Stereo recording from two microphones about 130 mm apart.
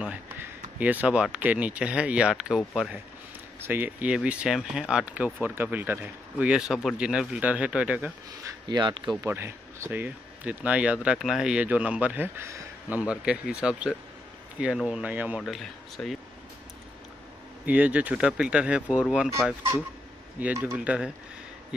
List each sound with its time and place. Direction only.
0.0 s speech: 10° right (ahead or behind)
3.6 s speech: 15° right (ahead or behind)
8.5 s speech: 30° right (ahead or behind)
9.2 s speech: 20° right (ahead or behind)
13.0 s speech: 10° right (ahead or behind)
15.4 s speech: centre (ahead or behind)
17.6 s speech: 10° right (ahead or behind)